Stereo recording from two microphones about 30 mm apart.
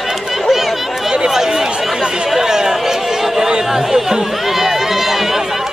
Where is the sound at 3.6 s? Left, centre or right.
Centre.